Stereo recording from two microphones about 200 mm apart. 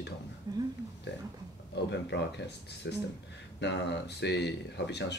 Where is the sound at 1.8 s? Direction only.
60° left (ahead or behind).